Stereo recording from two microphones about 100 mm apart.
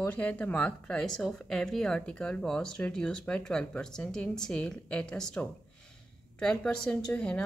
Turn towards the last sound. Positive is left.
turn(degrees=10)  # may be behind; listen again after turning